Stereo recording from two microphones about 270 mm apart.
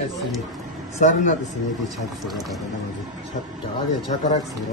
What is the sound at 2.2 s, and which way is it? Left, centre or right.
Speech, centre.